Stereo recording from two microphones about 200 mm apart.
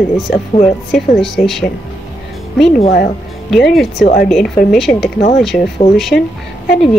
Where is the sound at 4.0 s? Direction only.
45° left (ahead or behind).